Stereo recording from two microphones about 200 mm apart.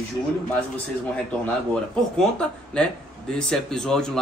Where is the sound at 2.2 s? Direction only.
5° left (ahead or behind).